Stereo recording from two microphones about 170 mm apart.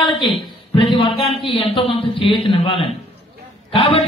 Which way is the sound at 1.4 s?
30° left (ahead or behind).